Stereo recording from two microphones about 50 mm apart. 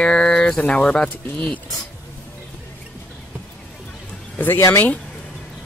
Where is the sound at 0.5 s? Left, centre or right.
Left.